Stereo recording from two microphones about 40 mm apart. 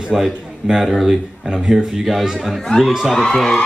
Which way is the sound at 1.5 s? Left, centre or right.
Centre.